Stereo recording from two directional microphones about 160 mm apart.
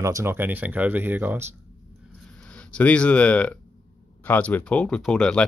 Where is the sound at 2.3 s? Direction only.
5° left (ahead or behind).